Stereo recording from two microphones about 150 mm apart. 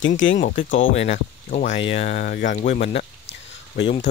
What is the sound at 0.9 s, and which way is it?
Speech, 50° left (ahead or behind).